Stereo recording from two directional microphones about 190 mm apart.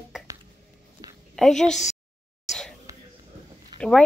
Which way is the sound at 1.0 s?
20° right (ahead or behind).